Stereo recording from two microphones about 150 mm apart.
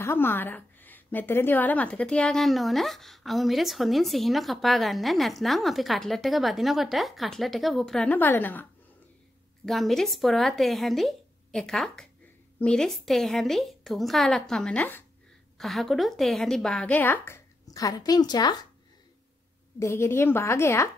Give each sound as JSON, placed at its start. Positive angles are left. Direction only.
{"t": 0.0, "sound": "a woman's voice", "side_deg": 15}
{"t": 9.7, "sound": "a woman's voice", "side_deg": 0}
{"t": 17.6, "sound": "a woman's voice", "side_deg": 25}
{"t": 19.8, "sound": "a woman's voice", "side_deg": 15}